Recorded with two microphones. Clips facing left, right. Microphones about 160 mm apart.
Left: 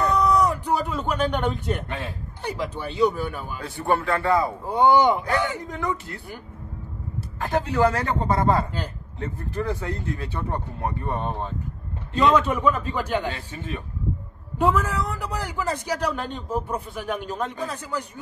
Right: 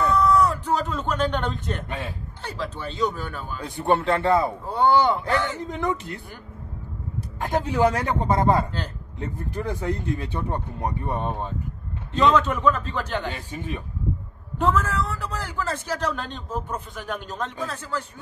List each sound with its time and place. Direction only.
0.0 s a sound: 15° left (ahead or behind)
2.4 s a man's voice: 15° left (ahead or behind)
3.6 s speech: 20° right (ahead or behind)
4.6 s a man's voice: 15° left (ahead or behind)
5.7 s speech: 20° right (ahead or behind)
7.4 s speech: 10° right (ahead or behind)
12.1 s a man's voice: 10° left (ahead or behind)
13.3 s speech: 15° right (ahead or behind)
14.6 s a man's voice: 10° left (ahead or behind)